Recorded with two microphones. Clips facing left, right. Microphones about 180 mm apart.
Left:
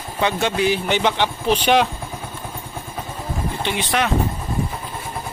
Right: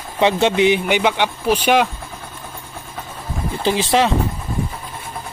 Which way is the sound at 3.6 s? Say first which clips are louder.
Right 6 dB; 30° right (ahead or behind).